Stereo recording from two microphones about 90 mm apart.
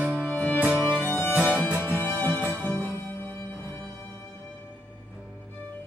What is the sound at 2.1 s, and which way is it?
Music, 20° left (ahead or behind).